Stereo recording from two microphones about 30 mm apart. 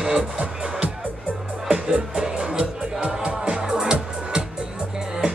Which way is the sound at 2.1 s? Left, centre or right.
Right.